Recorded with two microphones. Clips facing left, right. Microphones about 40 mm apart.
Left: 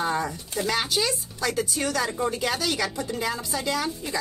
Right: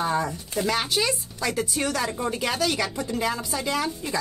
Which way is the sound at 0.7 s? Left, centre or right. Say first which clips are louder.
Right 1 dB; right.